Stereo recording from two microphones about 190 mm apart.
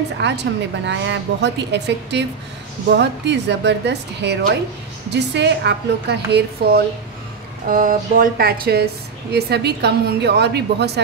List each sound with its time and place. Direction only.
0.2 s a woman's voice: 65° right (ahead or behind)
7.6 s a woman's voice: 45° right (ahead or behind)